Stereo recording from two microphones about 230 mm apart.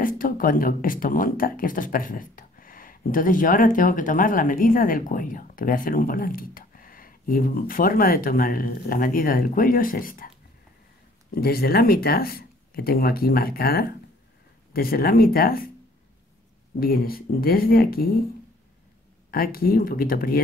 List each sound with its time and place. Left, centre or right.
0.0 s speech: left
11.3 s speech: left
16.8 s speech: left
19.3 s speech: left